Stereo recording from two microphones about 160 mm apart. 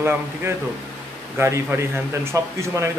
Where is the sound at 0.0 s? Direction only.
15° right (ahead or behind).